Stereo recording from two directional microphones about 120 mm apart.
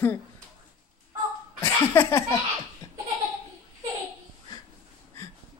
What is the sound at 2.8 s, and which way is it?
Laughter, 25° left (ahead or behind).